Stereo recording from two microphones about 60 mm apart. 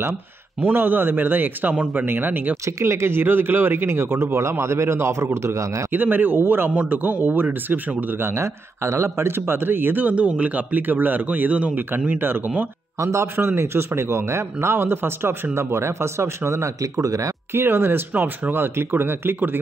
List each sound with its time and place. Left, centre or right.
0.6 s speech: right
2.6 s speech: right
5.9 s speech: right
12.1 s speech: right
13.0 s a man's voice: right
13.4 s speech: right
17.0 s speech: right
17.5 s speech: right